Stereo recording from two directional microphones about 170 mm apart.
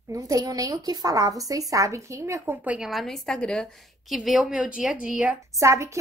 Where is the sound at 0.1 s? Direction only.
20° right (ahead or behind).